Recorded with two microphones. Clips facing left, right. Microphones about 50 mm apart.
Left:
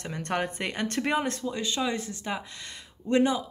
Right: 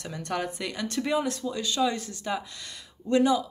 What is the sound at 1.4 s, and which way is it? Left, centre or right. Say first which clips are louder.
Speech: right 2 dB; left.